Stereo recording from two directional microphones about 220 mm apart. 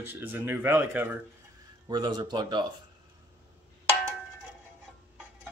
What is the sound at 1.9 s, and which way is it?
Speech, 20° right (ahead or behind).